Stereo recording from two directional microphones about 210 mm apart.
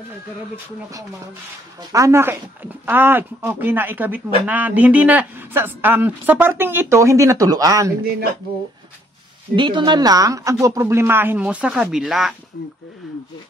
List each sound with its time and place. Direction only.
1.8 s speech: 15° right (ahead or behind)
8.0 s speech: 45° right (ahead or behind)
9.6 s speech: 20° right (ahead or behind); by 12.4 s centre (ahead or behind)